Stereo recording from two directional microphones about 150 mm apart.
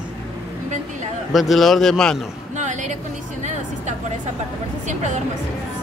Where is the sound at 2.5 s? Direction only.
55° right (ahead or behind).